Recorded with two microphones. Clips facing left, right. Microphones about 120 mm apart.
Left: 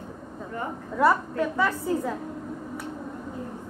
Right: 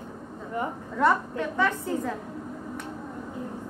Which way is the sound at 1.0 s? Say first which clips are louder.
Left 2 dB; 5° left (ahead or behind).